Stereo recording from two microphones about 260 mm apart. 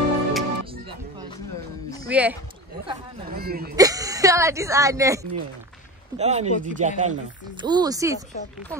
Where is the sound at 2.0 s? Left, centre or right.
Centre.